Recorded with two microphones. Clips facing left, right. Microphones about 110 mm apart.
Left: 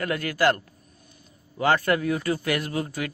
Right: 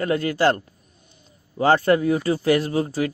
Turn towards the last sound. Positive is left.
turn(degrees=-30)  # may be behind; listen again after turning